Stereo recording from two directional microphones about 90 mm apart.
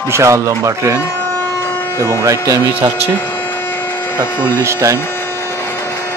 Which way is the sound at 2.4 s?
35° right (ahead or behind).